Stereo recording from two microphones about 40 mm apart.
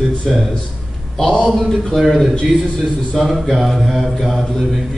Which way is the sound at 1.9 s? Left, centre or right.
Centre.